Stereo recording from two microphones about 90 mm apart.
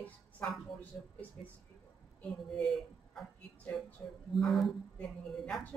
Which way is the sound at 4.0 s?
25° left (ahead or behind).